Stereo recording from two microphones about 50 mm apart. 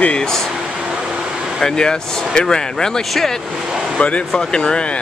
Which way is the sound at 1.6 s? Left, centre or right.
Centre.